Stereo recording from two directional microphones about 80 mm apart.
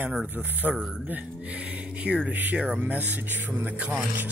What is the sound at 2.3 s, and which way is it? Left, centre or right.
Speech, right.